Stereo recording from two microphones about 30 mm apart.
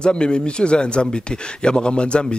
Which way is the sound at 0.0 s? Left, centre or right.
Left.